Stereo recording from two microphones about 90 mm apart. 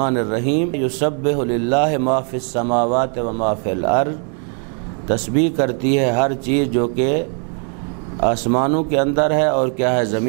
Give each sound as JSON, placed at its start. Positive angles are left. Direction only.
{"t": 0.0, "sound": "a man's voice", "side_deg": -10}
{"t": 5.1, "sound": "a man's voice", "side_deg": -5}